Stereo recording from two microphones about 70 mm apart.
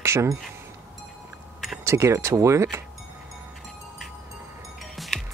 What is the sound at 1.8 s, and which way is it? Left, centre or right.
Speech, right.